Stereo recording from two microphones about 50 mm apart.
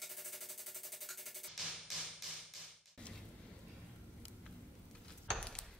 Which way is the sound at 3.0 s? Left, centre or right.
Centre.